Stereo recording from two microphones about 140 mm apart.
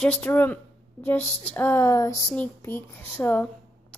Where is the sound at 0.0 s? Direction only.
10° left (ahead or behind).